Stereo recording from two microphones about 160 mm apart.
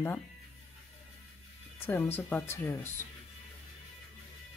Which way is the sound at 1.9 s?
15° left (ahead or behind).